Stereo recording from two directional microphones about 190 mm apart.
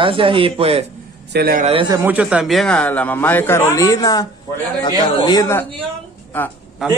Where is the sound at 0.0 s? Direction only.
25° right (ahead or behind).